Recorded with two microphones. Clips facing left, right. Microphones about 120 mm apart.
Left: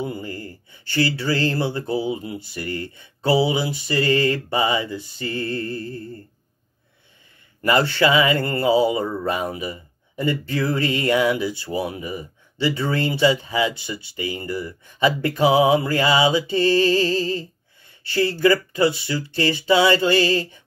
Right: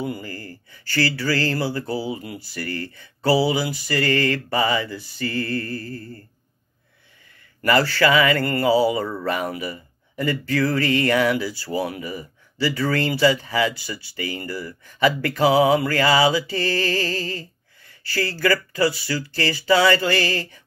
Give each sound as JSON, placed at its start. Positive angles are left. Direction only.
{"t": 0.0, "sound": "speech", "side_deg": 25}
{"t": 7.6, "sound": "speech", "side_deg": 25}